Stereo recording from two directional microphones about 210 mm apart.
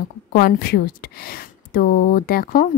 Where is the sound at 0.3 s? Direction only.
45° left (ahead or behind).